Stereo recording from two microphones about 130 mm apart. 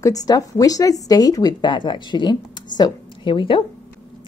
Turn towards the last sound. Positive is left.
turn(degrees=40)  # may be behind; listen again after turning